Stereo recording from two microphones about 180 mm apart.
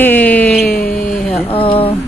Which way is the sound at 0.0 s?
10° left (ahead or behind).